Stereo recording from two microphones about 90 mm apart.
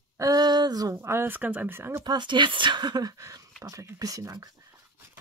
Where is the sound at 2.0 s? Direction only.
60° right (ahead or behind); by 4.7 s 40° right (ahead or behind).